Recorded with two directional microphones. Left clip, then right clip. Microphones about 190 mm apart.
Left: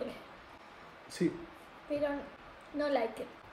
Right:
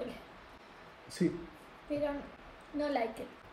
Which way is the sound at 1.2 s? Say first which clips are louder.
Even; centre (ahead or behind).